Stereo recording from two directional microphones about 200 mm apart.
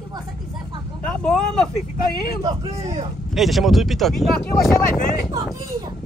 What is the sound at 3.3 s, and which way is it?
Speech, centre (ahead or behind).